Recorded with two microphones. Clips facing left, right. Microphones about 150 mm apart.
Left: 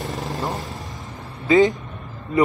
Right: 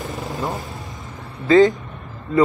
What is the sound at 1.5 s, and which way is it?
Speech, 20° left (ahead or behind).